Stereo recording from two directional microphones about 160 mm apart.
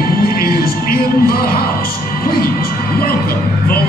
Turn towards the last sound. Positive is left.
turn(degrees=70)  # may be behind; listen again after turning